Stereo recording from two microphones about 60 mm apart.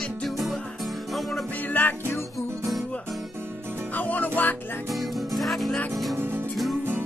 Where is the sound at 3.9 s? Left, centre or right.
Left.